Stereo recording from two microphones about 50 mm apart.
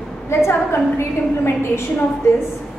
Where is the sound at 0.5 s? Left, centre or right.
Left.